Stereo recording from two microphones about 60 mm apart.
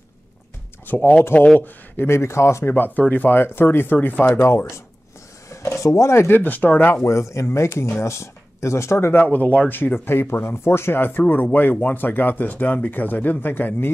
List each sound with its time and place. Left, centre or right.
0.8 s speech: left
1.6 s speech: left
2.6 s speech: left
5.5 s speech: left
6.3 s speech: left
7.1 s speech: left